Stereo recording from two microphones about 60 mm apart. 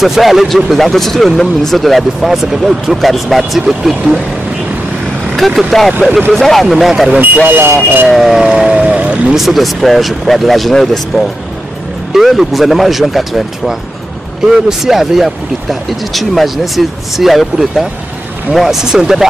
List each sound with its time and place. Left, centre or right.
0.0 s speech: centre
5.3 s speech: centre
7.4 s speech: right
8.1 s speech: centre
9.3 s speech: centre